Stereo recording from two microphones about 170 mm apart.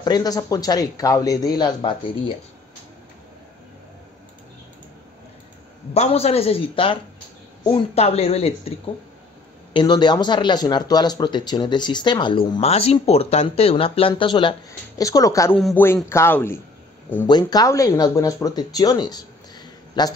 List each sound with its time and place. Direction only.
0.0 s speech: 25° left (ahead or behind)
5.9 s speech: 35° left (ahead or behind)
9.8 s a man's voice: 25° left (ahead or behind)
17.3 s speech: 25° left (ahead or behind)